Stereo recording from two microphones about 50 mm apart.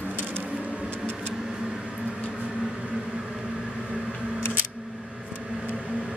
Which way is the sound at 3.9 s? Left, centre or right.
Centre.